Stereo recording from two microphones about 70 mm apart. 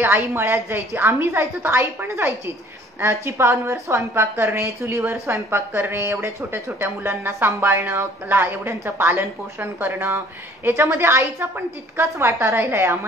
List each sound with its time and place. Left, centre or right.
0.0 s a woman's voice: right